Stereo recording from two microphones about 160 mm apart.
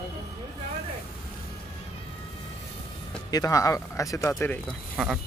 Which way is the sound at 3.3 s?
20° left (ahead or behind).